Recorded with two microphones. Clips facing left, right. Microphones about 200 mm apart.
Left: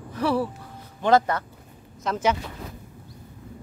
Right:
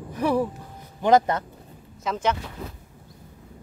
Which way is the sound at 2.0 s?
5° left (ahead or behind).